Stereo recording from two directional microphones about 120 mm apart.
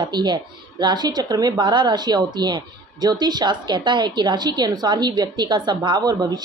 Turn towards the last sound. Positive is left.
turn(degrees=-35)  # may be behind; listen again after turning